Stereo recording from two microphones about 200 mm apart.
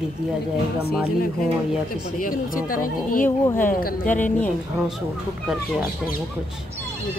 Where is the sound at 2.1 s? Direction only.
45° left (ahead or behind).